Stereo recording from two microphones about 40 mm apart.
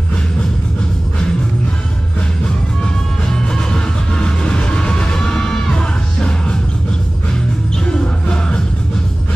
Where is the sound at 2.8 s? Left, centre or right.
Left.